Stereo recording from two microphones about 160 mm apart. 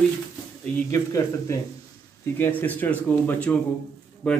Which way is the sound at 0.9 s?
20° left (ahead or behind).